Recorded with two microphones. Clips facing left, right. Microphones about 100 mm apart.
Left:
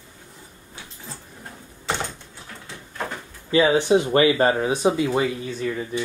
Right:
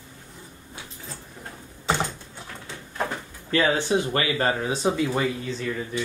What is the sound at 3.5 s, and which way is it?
Speech, 15° left (ahead or behind).